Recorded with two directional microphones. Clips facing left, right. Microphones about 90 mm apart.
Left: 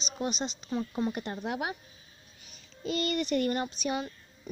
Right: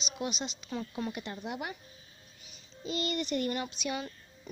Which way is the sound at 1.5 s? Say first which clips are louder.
Left 5 dB; 65° left (ahead or behind).